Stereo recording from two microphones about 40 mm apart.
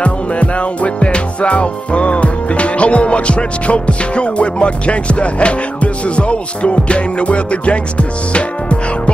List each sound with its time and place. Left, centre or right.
0.0 s music: left